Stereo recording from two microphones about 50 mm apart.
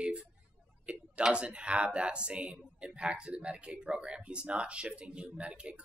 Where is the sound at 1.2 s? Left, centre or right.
Right.